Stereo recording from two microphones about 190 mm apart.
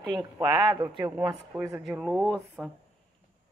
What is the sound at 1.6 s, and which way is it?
Speech, 5° right (ahead or behind).